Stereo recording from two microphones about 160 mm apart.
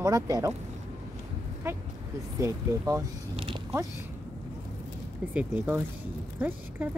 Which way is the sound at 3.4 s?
35° right (ahead or behind).